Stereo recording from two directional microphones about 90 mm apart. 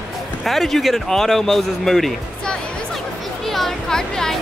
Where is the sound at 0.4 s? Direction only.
Centre (ahead or behind).